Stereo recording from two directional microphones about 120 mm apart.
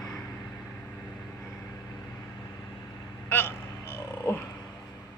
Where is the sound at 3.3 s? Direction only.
20° left (ahead or behind).